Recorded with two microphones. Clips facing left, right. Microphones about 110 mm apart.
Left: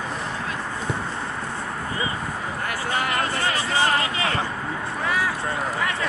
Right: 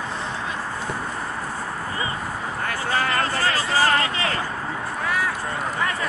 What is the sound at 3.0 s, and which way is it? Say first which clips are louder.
Music: right 1 dB; 30° right (ahead or behind).